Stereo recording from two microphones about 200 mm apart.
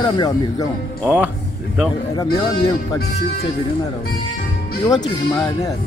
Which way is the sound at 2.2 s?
20° left (ahead or behind).